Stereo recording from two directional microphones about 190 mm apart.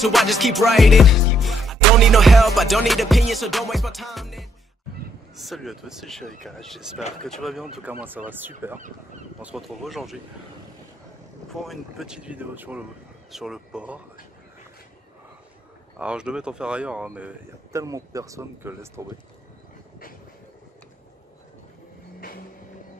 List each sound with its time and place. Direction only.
0.0 s music: centre (ahead or behind)
8.3 s speech: 10° right (ahead or behind)
9.4 s music: 5° right (ahead or behind)
11.5 s music: centre (ahead or behind)
16.0 s music: 5° right (ahead or behind)
17.7 s speech: 15° right (ahead or behind)